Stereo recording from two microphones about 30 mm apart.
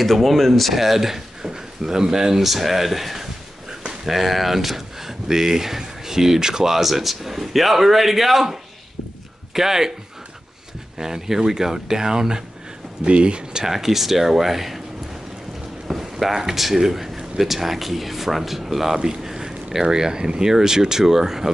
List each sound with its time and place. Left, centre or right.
0.0 s speech: centre
0.7 s speech: centre
1.5 s speech: right
2.4 s a man's voice: centre
6.7 s a man's voice: centre
11.0 s a man's voice: centre
13.0 s speech: right
13.7 s a man's voice: centre
15.9 s speech: centre